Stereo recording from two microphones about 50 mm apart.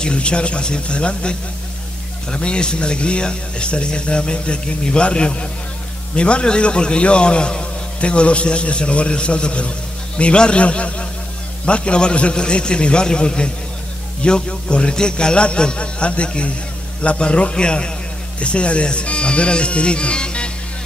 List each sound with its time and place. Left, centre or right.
0.0 s a man's voice: left
2.3 s a man's voice: centre